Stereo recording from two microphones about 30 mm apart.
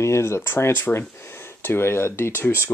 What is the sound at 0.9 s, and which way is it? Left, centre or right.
Speech, left.